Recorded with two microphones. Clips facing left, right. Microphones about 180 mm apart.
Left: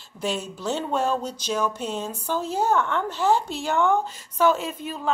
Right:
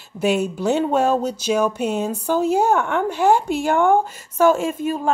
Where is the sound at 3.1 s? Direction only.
55° right (ahead or behind).